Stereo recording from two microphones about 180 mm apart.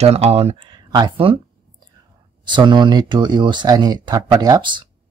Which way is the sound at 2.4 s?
25° right (ahead or behind).